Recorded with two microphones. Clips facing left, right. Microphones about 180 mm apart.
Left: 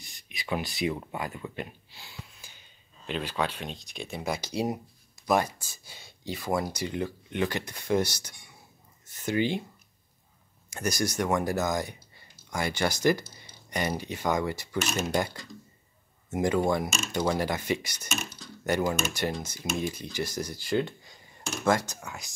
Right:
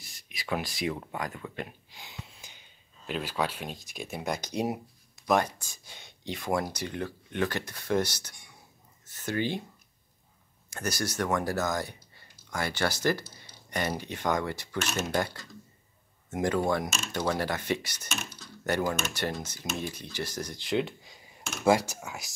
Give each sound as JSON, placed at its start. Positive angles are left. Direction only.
{"t": 0.0, "sound": "speech", "side_deg": 0}
{"t": 1.9, "sound": "a sound", "side_deg": -20}
{"t": 3.1, "sound": "speech", "side_deg": -5}
{"t": 4.3, "sound": "speech", "side_deg": 5}
{"t": 10.7, "sound": "speech", "side_deg": 15}